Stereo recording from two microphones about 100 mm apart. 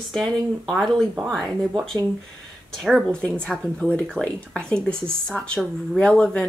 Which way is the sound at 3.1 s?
10° left (ahead or behind).